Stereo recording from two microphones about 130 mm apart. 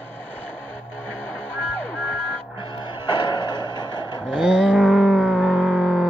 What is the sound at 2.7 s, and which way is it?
Music, 40° left (ahead or behind).